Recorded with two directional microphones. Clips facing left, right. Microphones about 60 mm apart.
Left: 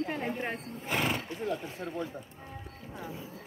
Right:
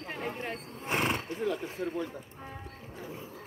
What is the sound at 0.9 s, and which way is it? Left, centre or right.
Speech, right.